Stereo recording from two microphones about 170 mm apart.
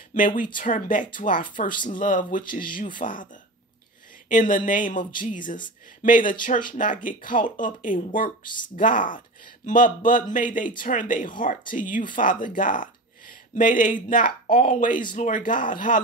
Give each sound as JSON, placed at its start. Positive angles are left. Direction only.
{"t": 0.1, "sound": "speech", "side_deg": 50}
{"t": 4.3, "sound": "speech", "side_deg": 50}